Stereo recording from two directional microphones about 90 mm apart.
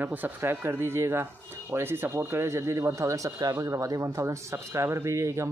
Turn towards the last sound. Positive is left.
turn(degrees=-35)  # may be behind; listen again after turning